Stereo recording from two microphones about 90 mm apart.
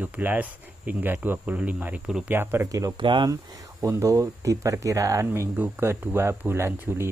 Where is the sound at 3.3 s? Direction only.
35° right (ahead or behind).